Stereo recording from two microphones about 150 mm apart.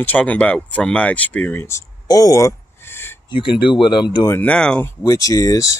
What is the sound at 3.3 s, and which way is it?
Speech, 35° left (ahead or behind).